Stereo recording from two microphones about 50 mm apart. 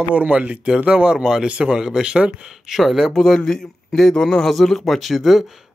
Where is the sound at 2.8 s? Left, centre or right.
Centre.